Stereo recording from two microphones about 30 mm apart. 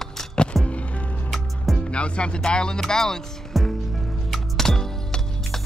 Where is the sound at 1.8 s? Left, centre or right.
Left; by 3.1 s centre.